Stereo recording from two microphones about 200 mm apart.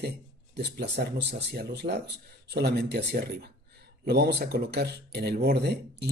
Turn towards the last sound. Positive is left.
turn(degrees=-55)  # may be behind; listen again after turning